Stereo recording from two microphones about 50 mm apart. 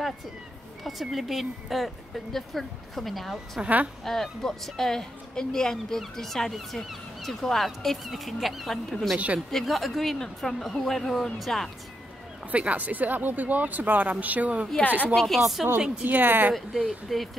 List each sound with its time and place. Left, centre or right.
0.8 s speech: centre
3.6 s a woman's voice: right
4.0 s a woman's voice: centre
12.4 s a woman's voice: right
15.1 s speech: centre
16.0 s speech: right
16.5 s speech: centre